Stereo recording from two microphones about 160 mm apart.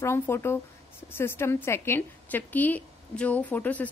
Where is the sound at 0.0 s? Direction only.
15° left (ahead or behind).